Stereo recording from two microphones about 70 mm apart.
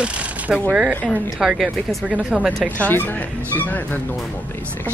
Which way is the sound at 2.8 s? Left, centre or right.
Left.